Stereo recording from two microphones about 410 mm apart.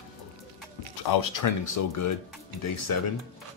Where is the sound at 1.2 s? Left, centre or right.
Left.